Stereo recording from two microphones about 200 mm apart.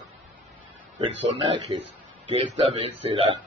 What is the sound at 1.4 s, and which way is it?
Speech, 25° right (ahead or behind).